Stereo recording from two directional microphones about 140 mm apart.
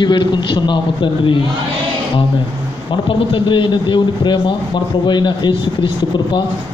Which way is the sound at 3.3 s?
35° left (ahead or behind).